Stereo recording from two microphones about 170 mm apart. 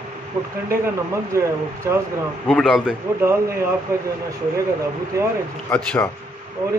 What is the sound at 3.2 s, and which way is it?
Speech, 15° right (ahead or behind).